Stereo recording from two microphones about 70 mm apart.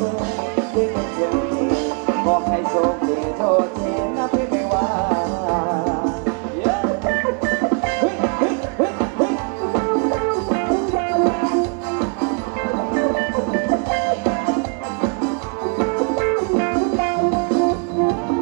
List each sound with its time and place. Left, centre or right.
0.6 s music: centre